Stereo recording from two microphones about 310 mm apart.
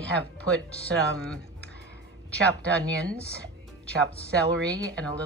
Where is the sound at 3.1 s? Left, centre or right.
Centre.